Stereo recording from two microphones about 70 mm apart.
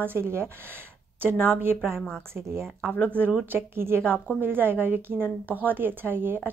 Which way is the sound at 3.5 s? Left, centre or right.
Right.